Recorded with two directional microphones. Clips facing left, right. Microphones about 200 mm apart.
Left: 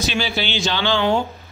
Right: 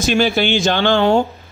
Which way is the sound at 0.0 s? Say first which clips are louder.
Right 8 dB; 50° right (ahead or behind).